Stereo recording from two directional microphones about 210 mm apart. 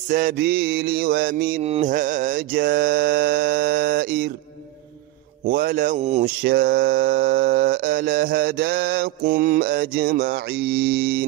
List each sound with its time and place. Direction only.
0.1 s mantra: 40° right (ahead or behind)
5.4 s a man's voice: 45° right (ahead or behind)
6.4 s mantra: 45° right (ahead or behind)
10.5 s mantra: 65° right (ahead or behind)
10.9 s mantra: 45° right (ahead or behind)